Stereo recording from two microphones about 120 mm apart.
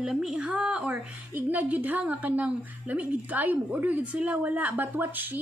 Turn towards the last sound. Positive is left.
turn(degrees=-15)  # may be behind; listen again after turning